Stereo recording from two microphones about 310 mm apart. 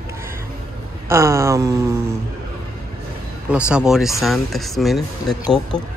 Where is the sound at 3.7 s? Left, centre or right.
Centre.